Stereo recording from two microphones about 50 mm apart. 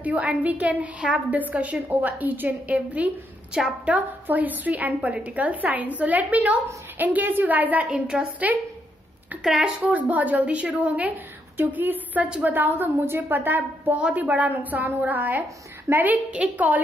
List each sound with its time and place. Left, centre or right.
0.0 s a woman's voice: right
3.5 s a woman's voice: centre
3.9 s a woman's voice: right
9.4 s speech: centre
9.9 s a woman's voice: right
13.9 s a woman's voice: right